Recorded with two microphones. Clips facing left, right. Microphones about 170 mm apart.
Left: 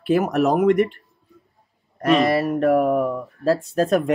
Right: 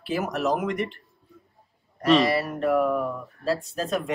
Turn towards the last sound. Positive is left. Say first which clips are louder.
# left 9 dB
turn(degrees=55)  # may be behind; listen again after turning